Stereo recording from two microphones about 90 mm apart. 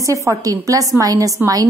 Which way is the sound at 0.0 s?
35° right (ahead or behind).